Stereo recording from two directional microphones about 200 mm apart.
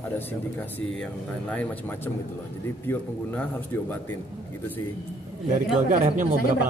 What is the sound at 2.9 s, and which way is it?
Speech, 10° left (ahead or behind).